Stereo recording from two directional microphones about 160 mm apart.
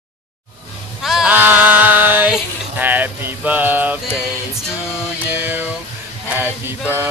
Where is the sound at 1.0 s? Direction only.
Centre (ahead or behind).